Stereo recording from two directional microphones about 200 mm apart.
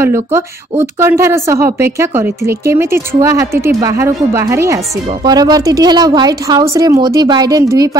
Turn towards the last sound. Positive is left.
turn(degrees=-15)  # may be behind; listen again after turning